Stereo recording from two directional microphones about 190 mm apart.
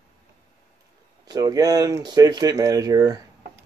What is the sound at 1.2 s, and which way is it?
Speech, 20° right (ahead or behind).